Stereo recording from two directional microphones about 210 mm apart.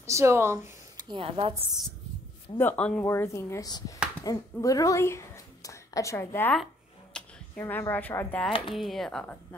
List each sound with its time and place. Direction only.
0.0 s a woman's voice: 15° right (ahead or behind)
2.6 s a woman's voice: 5° left (ahead or behind)